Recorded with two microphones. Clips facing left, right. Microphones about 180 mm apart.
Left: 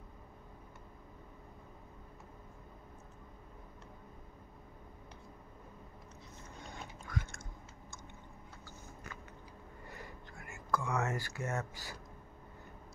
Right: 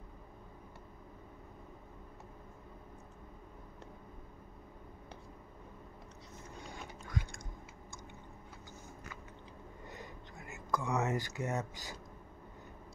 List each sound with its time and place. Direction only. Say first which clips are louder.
7.1 s chewing: right 1 dB; 15° right (ahead or behind)
9.8 s whispering: right 1 dB; 20° right (ahead or behind)